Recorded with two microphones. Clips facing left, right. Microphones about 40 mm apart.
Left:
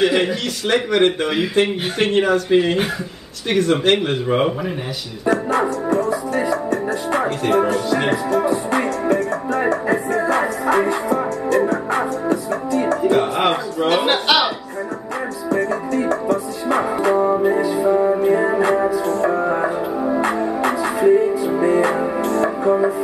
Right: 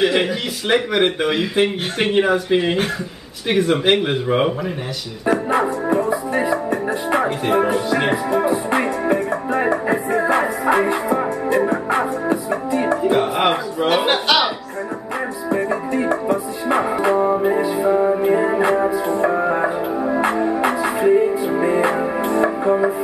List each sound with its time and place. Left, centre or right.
0.0 s speech: centre
5.9 s music: centre
13.0 s music: centre
15.5 s music: centre